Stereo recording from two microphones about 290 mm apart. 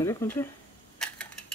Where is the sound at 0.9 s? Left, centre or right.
Centre.